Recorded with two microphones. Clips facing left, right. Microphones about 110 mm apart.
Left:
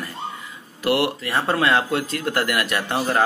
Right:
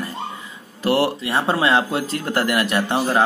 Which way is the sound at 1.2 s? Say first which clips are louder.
Right 1 dB; 20° right (ahead or behind).